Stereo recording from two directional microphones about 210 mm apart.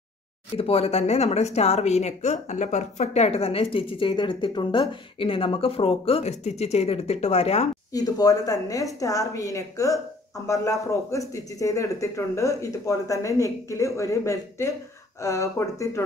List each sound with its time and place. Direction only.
0.6 s a woman's voice: 30° left (ahead or behind)
7.9 s speech: 20° left (ahead or behind)